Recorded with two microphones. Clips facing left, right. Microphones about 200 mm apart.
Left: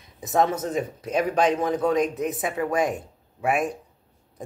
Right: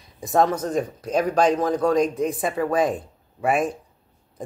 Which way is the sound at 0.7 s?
5° left (ahead or behind).